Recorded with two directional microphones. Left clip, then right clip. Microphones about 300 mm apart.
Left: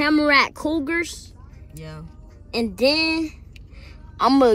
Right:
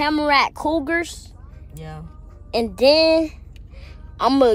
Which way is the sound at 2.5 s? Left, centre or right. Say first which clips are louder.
Right 5 dB; centre.